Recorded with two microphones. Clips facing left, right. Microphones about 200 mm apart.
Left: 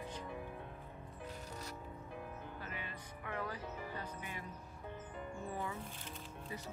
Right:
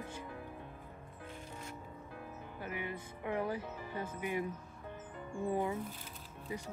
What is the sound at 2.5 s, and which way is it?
Music, 15° right (ahead or behind).